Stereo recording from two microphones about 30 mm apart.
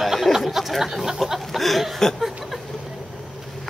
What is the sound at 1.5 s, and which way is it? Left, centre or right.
Speech, centre.